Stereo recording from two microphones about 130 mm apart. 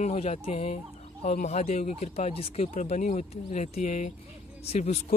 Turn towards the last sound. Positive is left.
turn(degrees=55)  # may be behind; listen again after turning